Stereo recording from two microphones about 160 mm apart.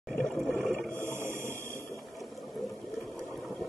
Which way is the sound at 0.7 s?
10° left (ahead or behind).